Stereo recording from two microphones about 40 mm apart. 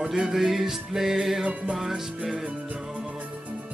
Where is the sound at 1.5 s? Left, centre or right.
Right.